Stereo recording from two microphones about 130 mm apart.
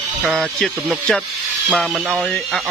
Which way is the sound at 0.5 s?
Centre (ahead or behind).